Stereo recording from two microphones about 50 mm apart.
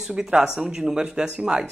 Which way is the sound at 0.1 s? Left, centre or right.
Centre.